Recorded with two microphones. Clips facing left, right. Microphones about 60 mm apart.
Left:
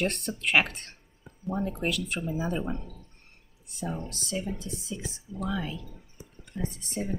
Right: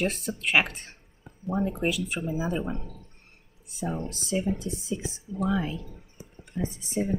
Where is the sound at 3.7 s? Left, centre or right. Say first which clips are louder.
Right 3 dB; centre.